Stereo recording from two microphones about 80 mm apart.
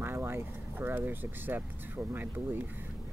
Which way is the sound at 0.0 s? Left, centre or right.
Right.